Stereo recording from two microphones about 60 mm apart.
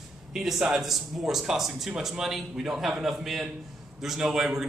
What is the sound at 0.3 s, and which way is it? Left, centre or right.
A man's voice, centre.